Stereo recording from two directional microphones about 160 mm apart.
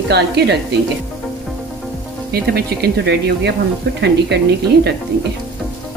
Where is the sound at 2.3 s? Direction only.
80° right.